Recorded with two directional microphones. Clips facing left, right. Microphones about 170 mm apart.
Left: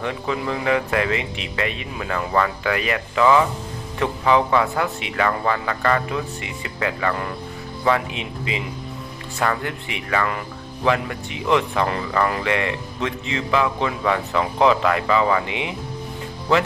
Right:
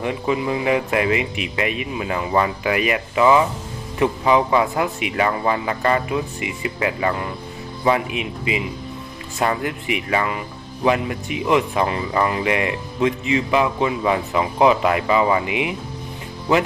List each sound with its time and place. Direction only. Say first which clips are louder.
0.0 s speech: right 3 dB; 15° right (ahead or behind)